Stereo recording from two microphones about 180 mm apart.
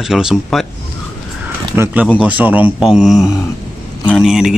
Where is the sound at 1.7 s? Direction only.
10° right (ahead or behind).